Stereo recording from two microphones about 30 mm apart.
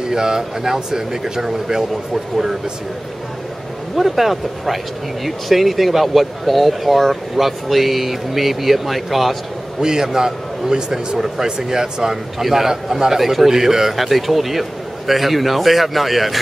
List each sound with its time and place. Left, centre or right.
0.1 s speech: centre
3.9 s speech: centre
9.8 s a man's voice: right
12.4 s speech: centre